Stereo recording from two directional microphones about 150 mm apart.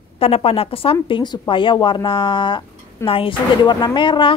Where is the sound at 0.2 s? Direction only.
40° left (ahead or behind).